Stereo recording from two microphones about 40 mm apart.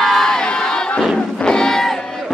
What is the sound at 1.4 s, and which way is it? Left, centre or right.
Music, centre.